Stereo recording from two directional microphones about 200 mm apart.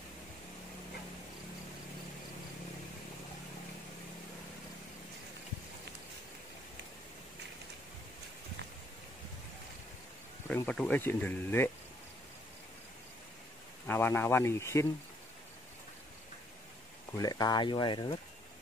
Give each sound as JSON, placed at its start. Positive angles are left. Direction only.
{"t": 10.5, "sound": "speech", "side_deg": 5}
{"t": 13.8, "sound": "speech", "side_deg": 10}
{"t": 17.2, "sound": "speech", "side_deg": 20}